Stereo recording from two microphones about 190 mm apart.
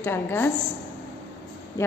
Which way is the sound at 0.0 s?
10° left (ahead or behind).